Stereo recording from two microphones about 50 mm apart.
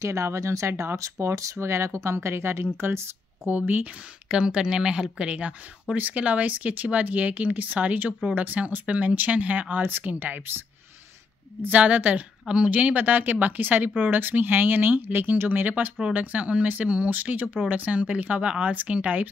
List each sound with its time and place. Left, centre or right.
0.0 s speech: right
2.1 s speech: right
3.4 s speech: right
4.3 s speech: centre; by 10.6 s right
11.6 s speech: right